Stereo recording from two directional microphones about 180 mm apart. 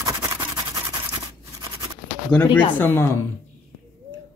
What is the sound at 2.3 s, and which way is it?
Speech, 10° left (ahead or behind).